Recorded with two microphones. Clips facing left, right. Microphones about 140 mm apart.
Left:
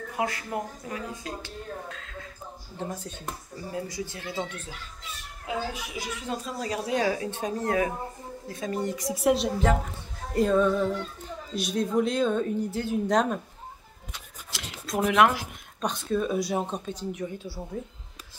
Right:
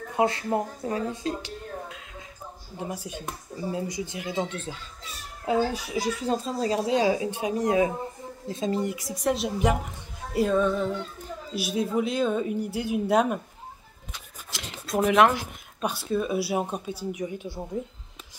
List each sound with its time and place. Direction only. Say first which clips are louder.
0.1 s a child's voice: right 6 dB; 25° right (ahead or behind)
2.0 s a sound: left 2 dB; 15° right (ahead or behind)
2.8 s a child's voice: right 1 dB; 10° right (ahead or behind)
8.8 s music: left 2 dB; 5° right (ahead or behind)
11.5 s speech: even; 5° right (ahead or behind)
14.5 s speech: right 2 dB; centre (ahead or behind); by 17.6 s 15° right (ahead or behind)